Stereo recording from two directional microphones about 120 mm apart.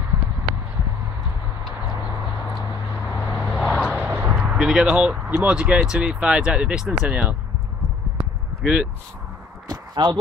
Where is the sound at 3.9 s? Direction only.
15° right (ahead or behind).